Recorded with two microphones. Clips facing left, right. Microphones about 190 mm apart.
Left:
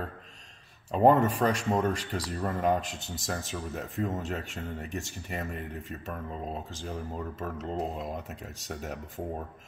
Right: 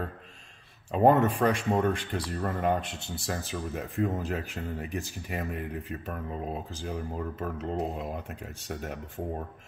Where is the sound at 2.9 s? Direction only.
30° right (ahead or behind).